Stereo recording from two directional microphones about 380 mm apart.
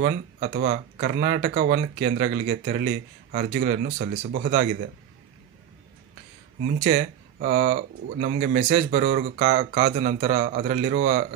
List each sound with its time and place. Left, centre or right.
0.0 s speech: right
6.8 s speech: right